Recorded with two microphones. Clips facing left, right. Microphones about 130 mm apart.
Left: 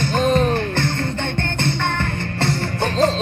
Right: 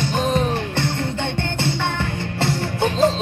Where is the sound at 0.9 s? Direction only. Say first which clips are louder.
Even; 10° right (ahead or behind).